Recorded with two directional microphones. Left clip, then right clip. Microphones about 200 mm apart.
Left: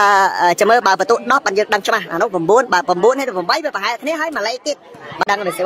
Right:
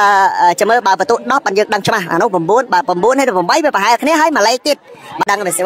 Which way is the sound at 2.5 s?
10° right (ahead or behind).